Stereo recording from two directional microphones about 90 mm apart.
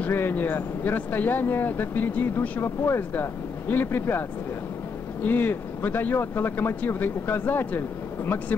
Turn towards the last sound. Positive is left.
turn(degrees=25)  # may be behind; listen again after turning